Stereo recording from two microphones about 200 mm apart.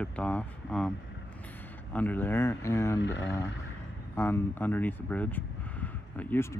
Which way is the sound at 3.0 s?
60° left (ahead or behind).